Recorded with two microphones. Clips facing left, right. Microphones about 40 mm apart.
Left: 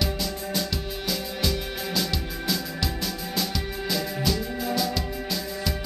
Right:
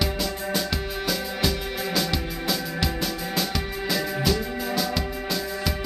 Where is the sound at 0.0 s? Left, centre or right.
Centre.